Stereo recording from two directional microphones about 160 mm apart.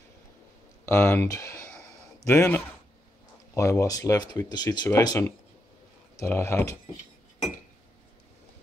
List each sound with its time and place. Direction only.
0.8 s speech: 15° left (ahead or behind)